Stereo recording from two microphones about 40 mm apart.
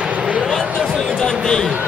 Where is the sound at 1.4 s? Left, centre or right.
Centre.